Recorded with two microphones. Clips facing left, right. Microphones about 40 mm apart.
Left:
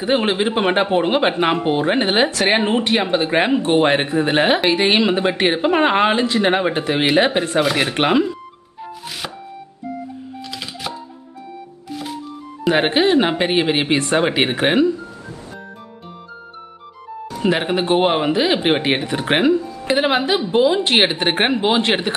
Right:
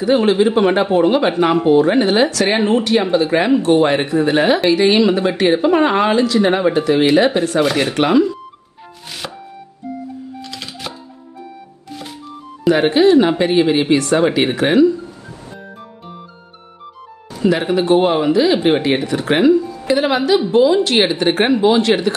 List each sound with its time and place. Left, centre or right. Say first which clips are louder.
0.0 s speech: right 5 dB; left
9.2 s music: right 2 dB; centre
10.5 s music: left 4 dB; centre
12.6 s speech: right 4 dB; left
17.4 s speech: right 3 dB; left